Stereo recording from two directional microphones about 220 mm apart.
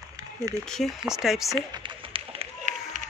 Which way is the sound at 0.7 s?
Centre (ahead or behind).